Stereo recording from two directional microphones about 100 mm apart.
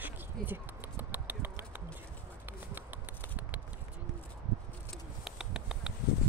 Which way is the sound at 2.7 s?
15° right (ahead or behind).